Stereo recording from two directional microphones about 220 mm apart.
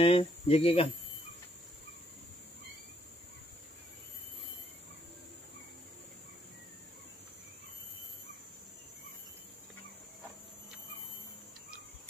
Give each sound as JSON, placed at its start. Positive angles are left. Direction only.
{"t": 0.0, "sound": "speech", "side_deg": 25}